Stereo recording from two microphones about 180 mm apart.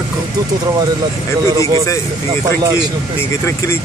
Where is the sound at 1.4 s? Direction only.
20° right (ahead or behind).